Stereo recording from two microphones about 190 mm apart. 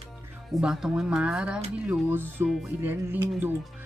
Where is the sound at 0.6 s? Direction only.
5° right (ahead or behind).